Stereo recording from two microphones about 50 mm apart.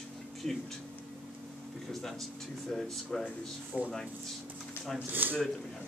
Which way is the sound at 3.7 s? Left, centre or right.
Right.